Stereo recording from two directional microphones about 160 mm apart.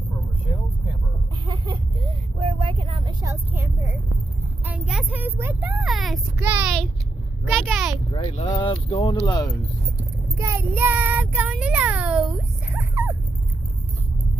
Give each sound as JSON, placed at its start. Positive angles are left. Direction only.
{"t": 2.3, "sound": "vehicle", "side_deg": -35}
{"t": 3.3, "sound": "speech", "side_deg": -15}
{"t": 4.6, "sound": "speech", "side_deg": -5}
{"t": 6.4, "sound": "speech", "side_deg": -10}
{"t": 7.4, "sound": "a child's voice", "side_deg": 5}
{"t": 8.1, "sound": "speech", "side_deg": 35}
{"t": 9.1, "sound": "speech", "side_deg": 20}
{"t": 10.3, "sound": "speech", "side_deg": -20}